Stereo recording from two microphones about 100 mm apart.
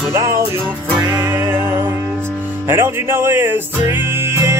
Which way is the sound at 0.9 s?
35° right (ahead or behind).